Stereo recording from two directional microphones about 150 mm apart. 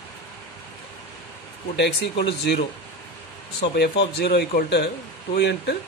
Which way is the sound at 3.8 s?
90° left.